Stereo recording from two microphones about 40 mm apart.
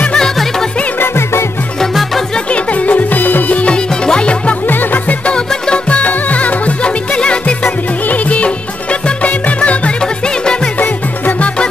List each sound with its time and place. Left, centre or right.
0.9 s music: left
2.7 s music: left
3.7 s music: left
4.6 s music: left
5.7 s music: left
10.8 s music: left